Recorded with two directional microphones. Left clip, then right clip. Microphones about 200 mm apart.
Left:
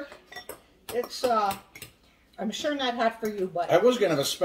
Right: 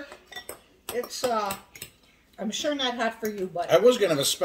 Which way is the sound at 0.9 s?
Centre (ahead or behind).